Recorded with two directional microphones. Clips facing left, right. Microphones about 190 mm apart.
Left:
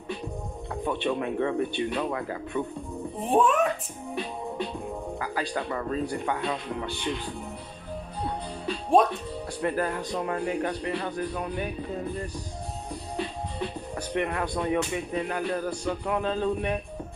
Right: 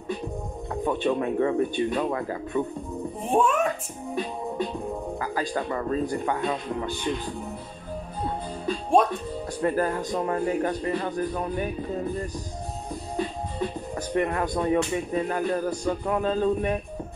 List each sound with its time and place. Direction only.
0.8 s speech: 40° right (ahead or behind)
3.3 s speech: centre (ahead or behind)
4.1 s music: 45° right (ahead or behind)
5.2 s speech: 40° right (ahead or behind)
9.6 s a man's voice: 40° right (ahead or behind)